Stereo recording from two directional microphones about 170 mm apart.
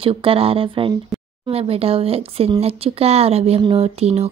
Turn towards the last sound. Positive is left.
turn(degrees=-40)  # may be behind; listen again after turning